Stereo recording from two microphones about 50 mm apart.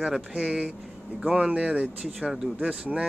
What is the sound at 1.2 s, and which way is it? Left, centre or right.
Speech, right.